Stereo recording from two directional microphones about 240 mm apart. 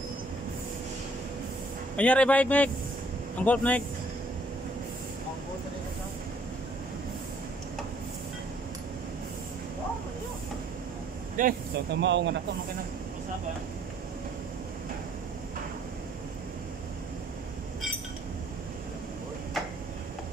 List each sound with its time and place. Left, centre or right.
2.0 s a man's voice: centre
11.3 s speech: right